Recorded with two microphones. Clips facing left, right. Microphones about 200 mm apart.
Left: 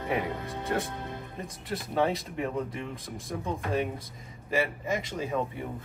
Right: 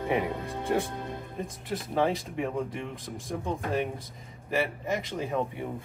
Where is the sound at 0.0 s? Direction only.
Centre (ahead or behind).